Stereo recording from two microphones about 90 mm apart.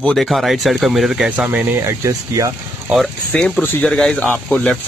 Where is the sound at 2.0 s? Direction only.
35° right (ahead or behind).